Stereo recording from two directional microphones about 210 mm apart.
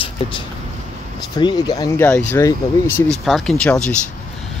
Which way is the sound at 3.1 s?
Centre (ahead or behind).